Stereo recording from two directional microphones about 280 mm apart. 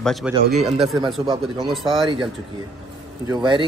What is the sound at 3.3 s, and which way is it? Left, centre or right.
Speech, centre.